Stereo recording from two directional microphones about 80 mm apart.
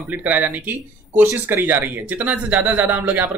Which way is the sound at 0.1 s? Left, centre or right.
Right.